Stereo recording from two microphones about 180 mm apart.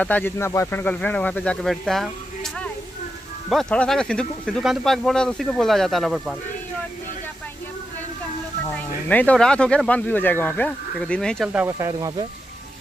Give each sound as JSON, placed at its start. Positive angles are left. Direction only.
{"t": 0.0, "sound": "speech", "side_deg": 10}
{"t": 8.7, "sound": "speech", "side_deg": 10}
{"t": 11.5, "sound": "speech", "side_deg": -15}